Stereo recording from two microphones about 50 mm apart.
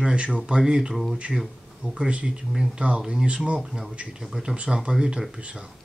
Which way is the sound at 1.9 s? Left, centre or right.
Right.